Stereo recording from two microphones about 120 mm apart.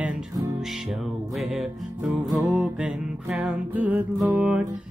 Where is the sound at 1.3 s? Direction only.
Centre (ahead or behind).